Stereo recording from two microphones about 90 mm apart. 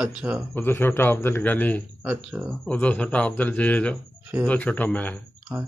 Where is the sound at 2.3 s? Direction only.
15° right (ahead or behind).